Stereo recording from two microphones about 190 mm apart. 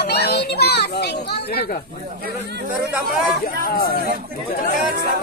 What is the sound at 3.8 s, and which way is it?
Speech, 55° left (ahead or behind).